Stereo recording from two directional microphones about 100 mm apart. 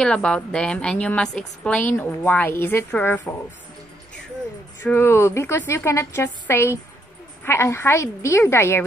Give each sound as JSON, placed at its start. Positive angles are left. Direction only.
{"t": 0.0, "sound": "a woman's voice", "side_deg": 10}
{"t": 4.8, "sound": "a woman's voice", "side_deg": 25}